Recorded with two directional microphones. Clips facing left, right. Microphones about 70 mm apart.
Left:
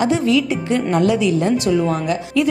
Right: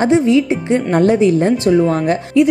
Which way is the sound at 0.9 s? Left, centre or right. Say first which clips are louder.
Right 5 dB; right.